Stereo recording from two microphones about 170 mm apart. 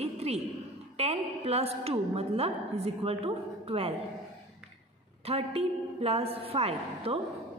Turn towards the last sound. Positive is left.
turn(degrees=-35)  # may be behind; listen again after turning